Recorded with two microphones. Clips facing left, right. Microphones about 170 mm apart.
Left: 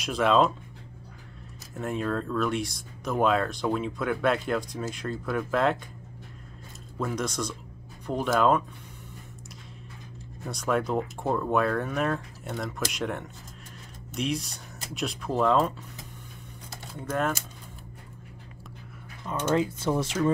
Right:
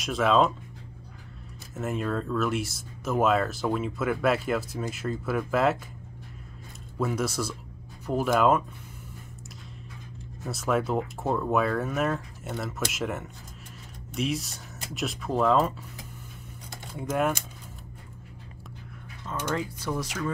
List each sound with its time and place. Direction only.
0.0 s speech: centre (ahead or behind)
1.7 s speech: 5° right (ahead or behind)
7.0 s speech: 5° right (ahead or behind)
10.4 s speech: centre (ahead or behind)
19.2 s speech: 20° left (ahead or behind)